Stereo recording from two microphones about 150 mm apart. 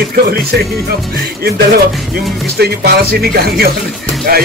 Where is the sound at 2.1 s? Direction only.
90° right.